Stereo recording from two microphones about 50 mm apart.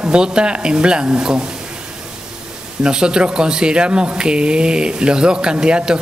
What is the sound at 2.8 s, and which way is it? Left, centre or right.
Speech, centre.